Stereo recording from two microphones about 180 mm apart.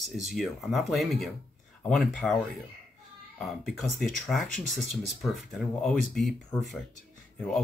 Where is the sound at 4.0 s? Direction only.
Centre (ahead or behind).